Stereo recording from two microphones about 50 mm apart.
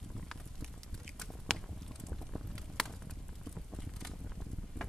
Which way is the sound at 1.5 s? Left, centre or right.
Centre.